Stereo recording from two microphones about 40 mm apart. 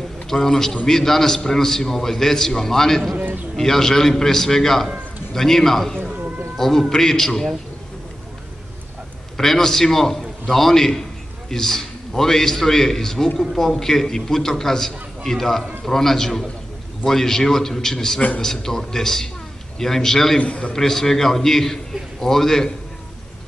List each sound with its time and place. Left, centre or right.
0.3 s a man's voice: centre
9.4 s a man's voice: centre
20.3 s a man's voice: left
20.7 s a man's voice: centre